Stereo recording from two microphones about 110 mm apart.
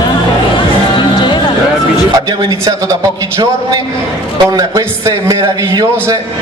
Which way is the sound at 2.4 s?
35° right (ahead or behind).